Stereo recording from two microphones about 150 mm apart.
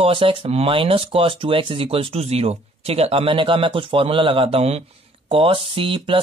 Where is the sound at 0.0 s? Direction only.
35° right (ahead or behind).